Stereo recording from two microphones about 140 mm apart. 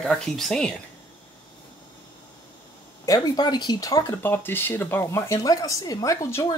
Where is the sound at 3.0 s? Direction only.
30° left (ahead or behind).